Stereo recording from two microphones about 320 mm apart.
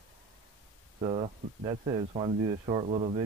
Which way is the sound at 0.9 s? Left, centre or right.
Centre.